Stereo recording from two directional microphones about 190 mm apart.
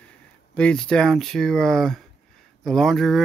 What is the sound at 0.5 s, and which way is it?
Speech, 5° left (ahead or behind).